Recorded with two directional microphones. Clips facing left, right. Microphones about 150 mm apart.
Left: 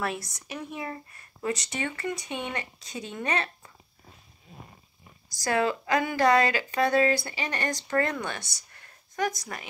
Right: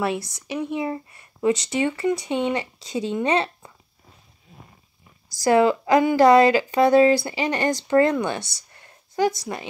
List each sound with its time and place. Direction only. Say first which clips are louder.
0.0 s speech: right 7 dB; 25° right (ahead or behind)
5.4 s speech: right 9 dB; 30° right (ahead or behind)